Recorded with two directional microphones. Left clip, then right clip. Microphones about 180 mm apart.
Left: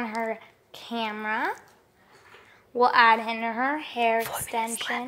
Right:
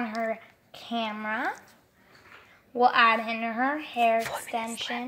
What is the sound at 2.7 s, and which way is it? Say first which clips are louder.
Speech: left 2 dB; 30° left (ahead or behind).